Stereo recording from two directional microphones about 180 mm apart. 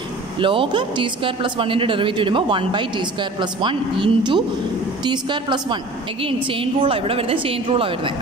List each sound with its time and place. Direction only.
0.4 s a woman's voice: 30° right (ahead or behind)